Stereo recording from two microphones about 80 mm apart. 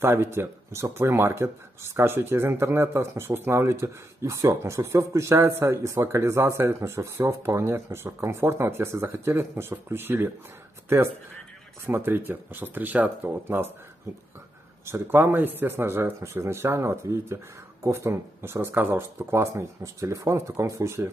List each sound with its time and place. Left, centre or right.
0.0 s speech: right
11.8 s speech: right
14.9 s speech: right
19.1 s speech: right